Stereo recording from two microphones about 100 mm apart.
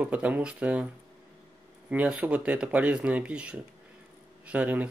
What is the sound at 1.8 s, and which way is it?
Speech, 15° right (ahead or behind).